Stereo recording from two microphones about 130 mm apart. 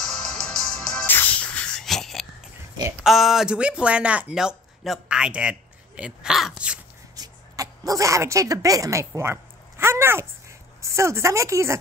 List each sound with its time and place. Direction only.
0.0 s music: 5° left (ahead or behind)
1.0 s music: 15° left (ahead or behind)
3.0 s speech: centre (ahead or behind)
7.2 s speech: 25° right (ahead or behind)